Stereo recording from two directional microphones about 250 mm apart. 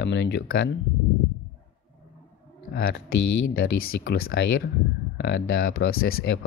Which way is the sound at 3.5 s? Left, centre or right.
Left.